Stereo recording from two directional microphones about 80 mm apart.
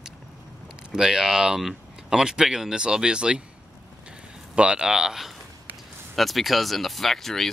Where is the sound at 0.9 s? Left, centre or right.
Centre.